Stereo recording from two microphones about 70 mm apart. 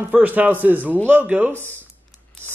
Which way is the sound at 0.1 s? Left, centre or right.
Right.